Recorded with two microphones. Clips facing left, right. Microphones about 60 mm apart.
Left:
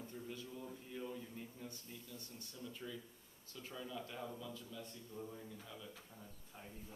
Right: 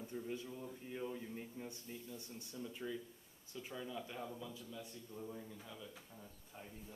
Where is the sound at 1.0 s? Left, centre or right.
Right.